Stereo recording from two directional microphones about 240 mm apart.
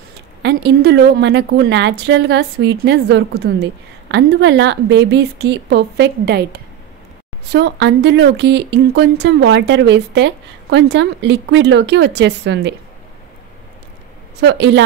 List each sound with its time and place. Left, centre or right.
0.4 s speech: right
14.4 s speech: right